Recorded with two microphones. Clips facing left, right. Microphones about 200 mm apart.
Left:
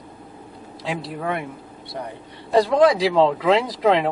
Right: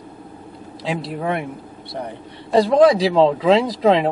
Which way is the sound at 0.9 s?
25° right (ahead or behind).